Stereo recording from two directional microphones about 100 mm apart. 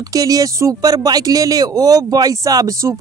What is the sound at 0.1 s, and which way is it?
Speech, 35° right (ahead or behind).